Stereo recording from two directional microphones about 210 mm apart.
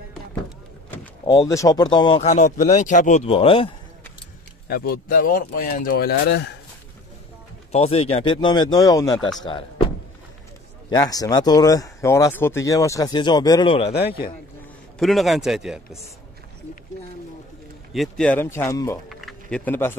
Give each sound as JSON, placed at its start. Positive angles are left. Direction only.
{"t": 1.2, "sound": "speech", "side_deg": 20}
{"t": 4.6, "sound": "speech", "side_deg": 45}
{"t": 7.7, "sound": "speech", "side_deg": 30}
{"t": 10.9, "sound": "speech", "side_deg": 15}
{"t": 15.0, "sound": "a man's voice", "side_deg": 0}
{"t": 17.9, "sound": "speech", "side_deg": 0}
{"t": 19.0, "sound": "a sound", "side_deg": 0}